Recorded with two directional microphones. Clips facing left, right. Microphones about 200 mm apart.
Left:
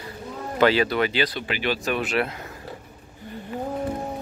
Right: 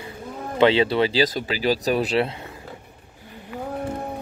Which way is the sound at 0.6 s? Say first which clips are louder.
Right 2 dB; 25° right (ahead or behind).